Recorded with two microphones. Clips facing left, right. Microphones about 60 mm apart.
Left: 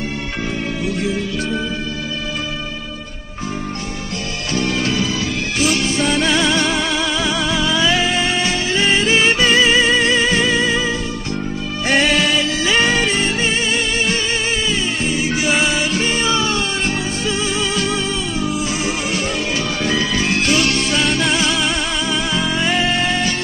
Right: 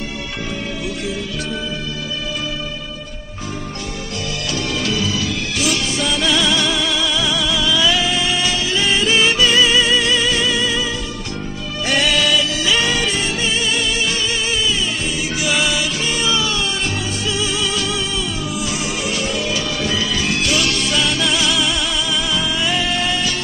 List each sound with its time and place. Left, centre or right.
4.6 s music: left
11.9 s music: left
19.8 s music: left